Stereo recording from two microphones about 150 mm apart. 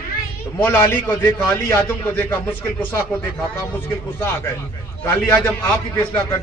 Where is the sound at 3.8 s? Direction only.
15° left (ahead or behind).